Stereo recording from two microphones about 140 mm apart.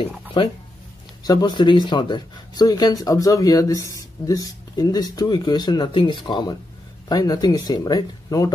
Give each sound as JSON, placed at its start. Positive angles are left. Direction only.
{"t": 1.2, "sound": "speech", "side_deg": 30}